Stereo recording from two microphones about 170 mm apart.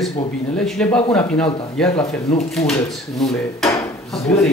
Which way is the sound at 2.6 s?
40° left (ahead or behind).